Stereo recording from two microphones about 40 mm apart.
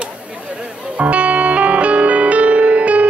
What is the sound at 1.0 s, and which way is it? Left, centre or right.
Music, right.